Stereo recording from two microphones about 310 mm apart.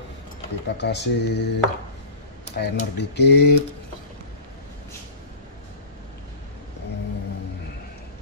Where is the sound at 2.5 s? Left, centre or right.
Left.